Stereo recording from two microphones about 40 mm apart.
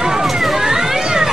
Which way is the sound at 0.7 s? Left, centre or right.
Centre.